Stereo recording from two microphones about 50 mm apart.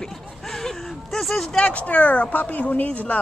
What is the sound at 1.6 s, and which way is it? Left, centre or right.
Speech, left.